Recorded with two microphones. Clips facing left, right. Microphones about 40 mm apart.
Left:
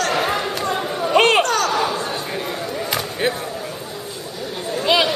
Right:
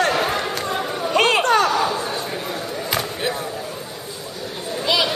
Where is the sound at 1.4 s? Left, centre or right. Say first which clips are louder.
Right 2 dB; right.